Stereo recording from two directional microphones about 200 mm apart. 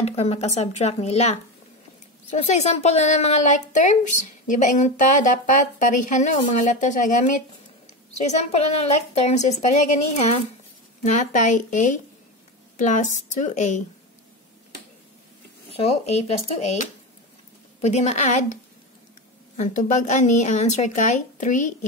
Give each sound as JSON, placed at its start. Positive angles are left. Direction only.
{"t": 0.0, "sound": "a woman's voice", "side_deg": 30}
{"t": 2.3, "sound": "a woman's voice", "side_deg": 35}
{"t": 15.7, "sound": "a woman's voice", "side_deg": 30}